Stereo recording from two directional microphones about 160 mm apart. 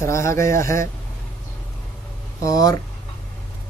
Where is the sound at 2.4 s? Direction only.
20° left (ahead or behind).